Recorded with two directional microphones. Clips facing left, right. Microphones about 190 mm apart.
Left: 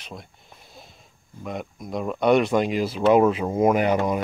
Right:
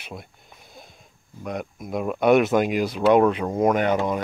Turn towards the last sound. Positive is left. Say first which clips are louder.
# left 1 dB
turn(degrees=5)  # may be behind; listen again after turning